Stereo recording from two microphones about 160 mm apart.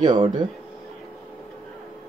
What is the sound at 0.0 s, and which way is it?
Speech, 25° right (ahead or behind).